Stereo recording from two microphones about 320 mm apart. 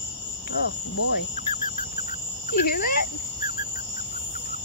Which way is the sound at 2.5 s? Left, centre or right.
Left.